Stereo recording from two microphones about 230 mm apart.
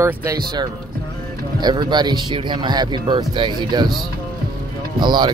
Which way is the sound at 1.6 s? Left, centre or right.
Centre.